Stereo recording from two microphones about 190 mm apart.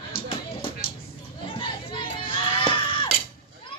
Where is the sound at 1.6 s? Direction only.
25° left (ahead or behind).